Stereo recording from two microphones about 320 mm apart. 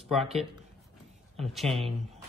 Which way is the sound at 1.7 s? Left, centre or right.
Centre.